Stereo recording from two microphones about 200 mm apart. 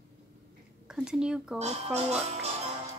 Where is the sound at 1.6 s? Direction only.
35° right (ahead or behind).